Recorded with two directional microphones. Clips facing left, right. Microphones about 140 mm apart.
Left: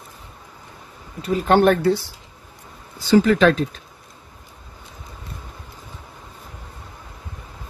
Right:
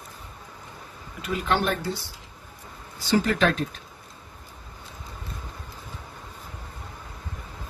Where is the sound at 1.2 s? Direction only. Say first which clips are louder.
Left 9 dB; 40° left (ahead or behind); by 2.0 s 65° left (ahead or behind).